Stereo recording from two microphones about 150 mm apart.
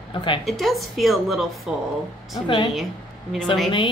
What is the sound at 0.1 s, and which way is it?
Speech, 30° left (ahead or behind).